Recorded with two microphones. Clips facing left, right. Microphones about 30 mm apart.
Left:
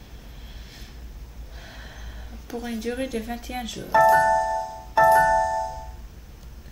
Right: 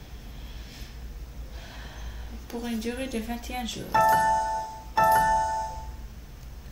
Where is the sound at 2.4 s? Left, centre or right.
Centre.